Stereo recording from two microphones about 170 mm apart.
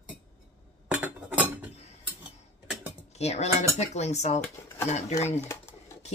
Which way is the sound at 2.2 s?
10° right (ahead or behind).